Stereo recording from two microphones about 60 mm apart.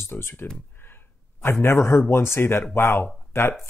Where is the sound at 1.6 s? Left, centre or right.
Left.